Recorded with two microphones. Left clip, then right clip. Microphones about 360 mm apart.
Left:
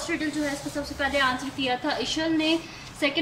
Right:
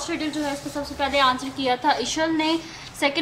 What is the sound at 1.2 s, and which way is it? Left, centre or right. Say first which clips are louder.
A woman's voice: right 4 dB; centre.